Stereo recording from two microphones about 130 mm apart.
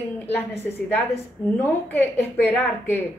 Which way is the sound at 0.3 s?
15° left (ahead or behind).